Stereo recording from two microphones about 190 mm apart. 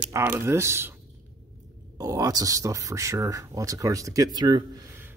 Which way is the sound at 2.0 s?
20° right (ahead or behind).